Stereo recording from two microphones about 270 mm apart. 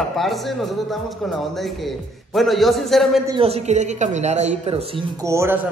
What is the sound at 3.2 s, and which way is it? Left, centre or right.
A man's voice, centre.